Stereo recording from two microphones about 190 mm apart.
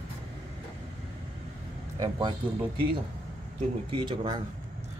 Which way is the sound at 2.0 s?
25° right (ahead or behind).